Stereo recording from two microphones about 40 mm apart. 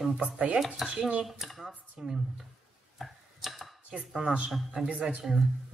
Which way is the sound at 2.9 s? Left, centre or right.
Centre.